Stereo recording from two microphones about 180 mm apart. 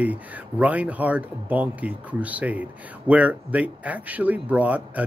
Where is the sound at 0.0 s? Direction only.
10° right (ahead or behind).